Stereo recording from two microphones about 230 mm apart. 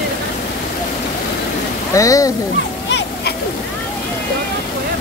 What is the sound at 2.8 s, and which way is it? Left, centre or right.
Splash, left.